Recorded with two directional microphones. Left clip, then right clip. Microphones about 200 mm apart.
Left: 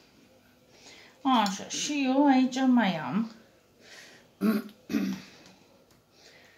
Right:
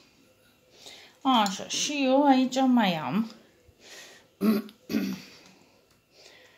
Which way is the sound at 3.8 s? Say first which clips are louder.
Right 2 dB; 40° right (ahead or behind).